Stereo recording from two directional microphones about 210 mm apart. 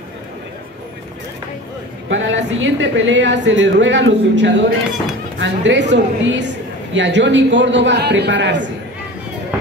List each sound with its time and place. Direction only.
2.0 s a woman's voice: 60° right (ahead or behind)